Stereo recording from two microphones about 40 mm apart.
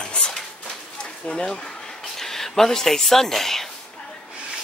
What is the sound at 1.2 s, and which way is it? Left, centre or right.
Speech, centre.